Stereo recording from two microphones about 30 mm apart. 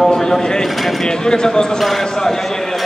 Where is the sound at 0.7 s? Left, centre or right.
Centre.